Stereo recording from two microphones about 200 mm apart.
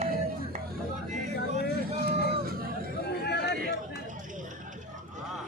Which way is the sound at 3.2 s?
55° left (ahead or behind).